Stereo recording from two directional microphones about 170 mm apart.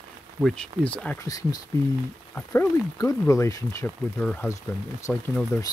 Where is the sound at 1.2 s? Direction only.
20° left (ahead or behind).